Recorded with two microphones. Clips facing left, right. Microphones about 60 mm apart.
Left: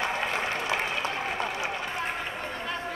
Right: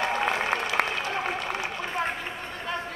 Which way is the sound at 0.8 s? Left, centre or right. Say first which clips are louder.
Right 5 dB; right.